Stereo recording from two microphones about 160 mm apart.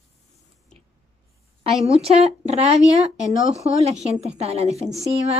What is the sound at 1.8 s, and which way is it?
Speech, 40° right (ahead or behind).